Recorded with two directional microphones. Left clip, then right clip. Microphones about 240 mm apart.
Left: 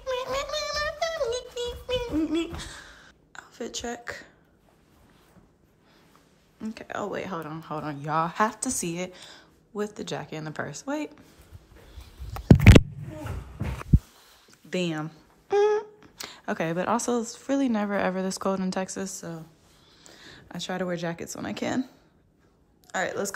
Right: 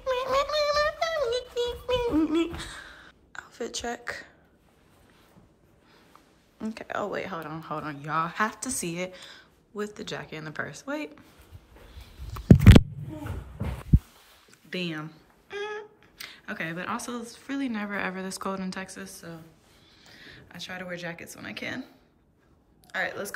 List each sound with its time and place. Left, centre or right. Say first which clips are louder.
0.0 s music: right 3 dB; centre
6.6 s speech: right 1 dB; centre
12.3 s a sound: left 1 dB; centre
14.7 s a woman's voice: left 4 dB; centre